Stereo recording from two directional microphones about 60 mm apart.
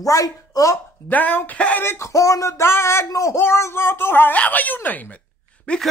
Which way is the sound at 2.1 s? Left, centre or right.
Left.